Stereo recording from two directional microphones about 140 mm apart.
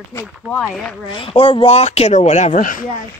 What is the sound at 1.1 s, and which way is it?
Speech, 40° left (ahead or behind).